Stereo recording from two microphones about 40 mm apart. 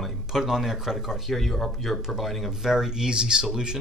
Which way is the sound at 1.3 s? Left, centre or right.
Centre.